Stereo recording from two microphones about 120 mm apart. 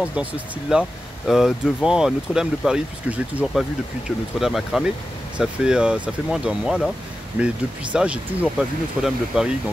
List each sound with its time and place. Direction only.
0.1 s speech: 10° right (ahead or behind)